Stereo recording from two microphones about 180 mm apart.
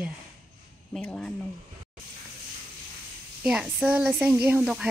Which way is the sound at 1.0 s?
5° left (ahead or behind).